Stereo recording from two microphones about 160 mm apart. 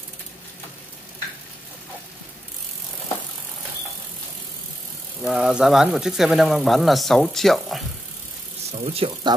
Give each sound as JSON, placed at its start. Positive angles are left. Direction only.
{"t": 5.2, "sound": "speech", "side_deg": -5}
{"t": 8.7, "sound": "speech", "side_deg": -35}